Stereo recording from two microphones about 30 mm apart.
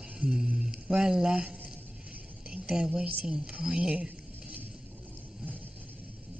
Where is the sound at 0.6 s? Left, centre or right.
Right.